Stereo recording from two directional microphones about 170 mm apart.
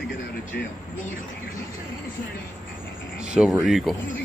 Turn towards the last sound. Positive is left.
turn(degrees=0)  # may be behind; listen again after turning